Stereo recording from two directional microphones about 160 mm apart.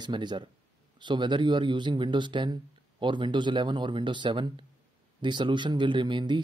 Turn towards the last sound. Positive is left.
turn(degrees=-30)  # may be behind; listen again after turning